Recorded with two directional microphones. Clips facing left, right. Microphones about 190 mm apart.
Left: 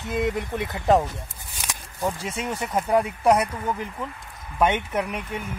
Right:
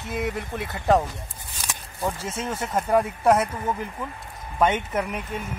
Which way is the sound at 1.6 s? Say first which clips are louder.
Left 1 dB; 15° left (ahead or behind).